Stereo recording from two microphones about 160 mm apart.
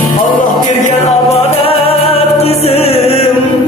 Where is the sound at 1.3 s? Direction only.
35° left (ahead or behind).